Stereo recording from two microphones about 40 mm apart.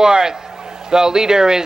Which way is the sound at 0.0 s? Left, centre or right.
Centre.